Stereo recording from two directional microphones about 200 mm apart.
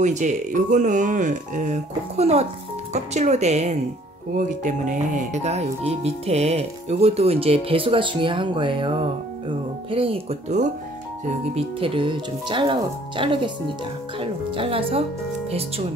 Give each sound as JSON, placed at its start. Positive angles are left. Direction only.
{"t": 0.0, "sound": "speech", "side_deg": -35}